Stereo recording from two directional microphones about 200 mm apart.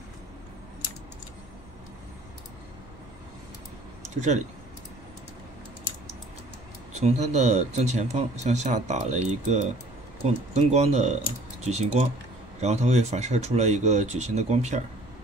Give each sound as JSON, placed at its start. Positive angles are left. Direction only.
{"t": 6.9, "sound": "speech", "side_deg": -35}